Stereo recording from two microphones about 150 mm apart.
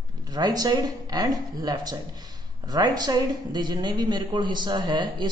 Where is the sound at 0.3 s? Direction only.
25° right (ahead or behind).